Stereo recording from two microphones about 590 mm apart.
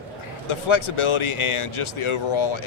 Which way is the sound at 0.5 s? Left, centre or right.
Left.